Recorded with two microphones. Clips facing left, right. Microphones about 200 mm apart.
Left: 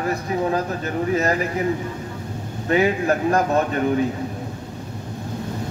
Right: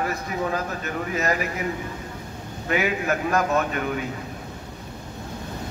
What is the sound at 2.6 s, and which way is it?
A man's voice, 30° left (ahead or behind).